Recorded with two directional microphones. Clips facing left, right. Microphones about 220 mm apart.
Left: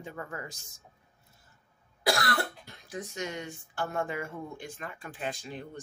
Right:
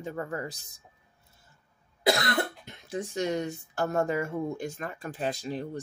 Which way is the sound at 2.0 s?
20° right (ahead or behind).